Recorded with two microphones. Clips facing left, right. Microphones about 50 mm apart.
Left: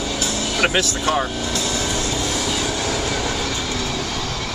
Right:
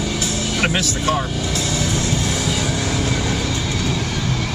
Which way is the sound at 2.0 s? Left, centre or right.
Right.